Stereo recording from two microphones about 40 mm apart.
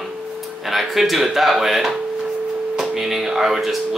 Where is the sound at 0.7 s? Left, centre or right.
Centre.